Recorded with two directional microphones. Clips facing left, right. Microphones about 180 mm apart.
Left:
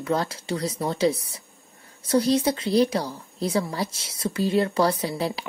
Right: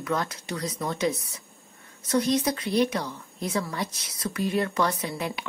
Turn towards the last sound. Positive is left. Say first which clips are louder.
# left 4 dB
turn(degrees=35)  # may be behind; listen again after turning